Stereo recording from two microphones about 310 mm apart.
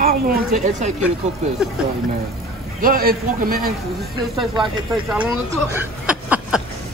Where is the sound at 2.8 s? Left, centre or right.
Right.